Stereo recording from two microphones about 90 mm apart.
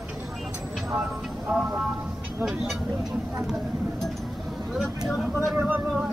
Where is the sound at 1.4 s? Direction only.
10° right (ahead or behind).